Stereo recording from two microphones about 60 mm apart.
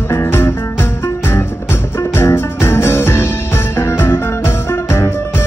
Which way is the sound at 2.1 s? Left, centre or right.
Left.